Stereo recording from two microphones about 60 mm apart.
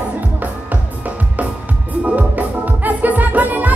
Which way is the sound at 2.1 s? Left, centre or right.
Right.